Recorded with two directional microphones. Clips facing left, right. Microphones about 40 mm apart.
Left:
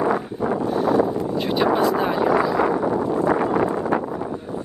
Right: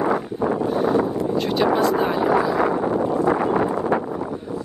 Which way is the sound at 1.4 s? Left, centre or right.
Centre.